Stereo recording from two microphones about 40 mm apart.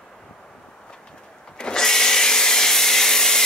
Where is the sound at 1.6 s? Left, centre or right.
Centre.